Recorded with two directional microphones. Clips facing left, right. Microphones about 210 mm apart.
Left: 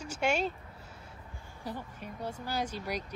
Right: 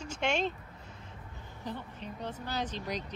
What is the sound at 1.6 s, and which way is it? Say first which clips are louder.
Speech: even; 10° left (ahead or behind).